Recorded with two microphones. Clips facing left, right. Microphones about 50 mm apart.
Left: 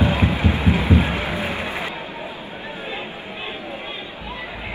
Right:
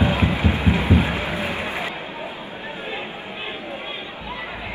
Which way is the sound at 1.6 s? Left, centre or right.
Right.